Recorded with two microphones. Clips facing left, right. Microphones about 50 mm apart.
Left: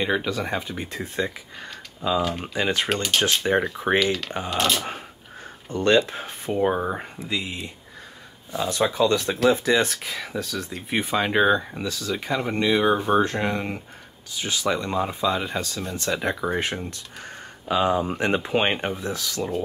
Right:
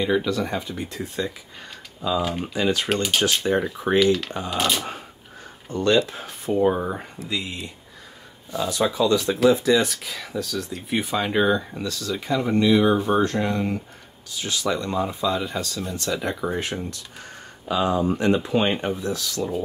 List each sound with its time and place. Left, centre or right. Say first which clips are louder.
0.0 s speech: right 2 dB; left
2.4 s speech: right 1 dB; left
2.9 s speech: right 1 dB; centre
5.8 s speech: left 1 dB; left
8.5 s speech: even; left
10.1 s speech: right 1 dB; left